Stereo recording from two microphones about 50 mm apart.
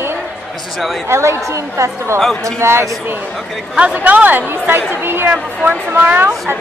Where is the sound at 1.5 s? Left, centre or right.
Right.